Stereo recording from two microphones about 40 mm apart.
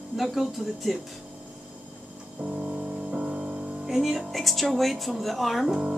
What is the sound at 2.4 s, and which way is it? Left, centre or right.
Music, right.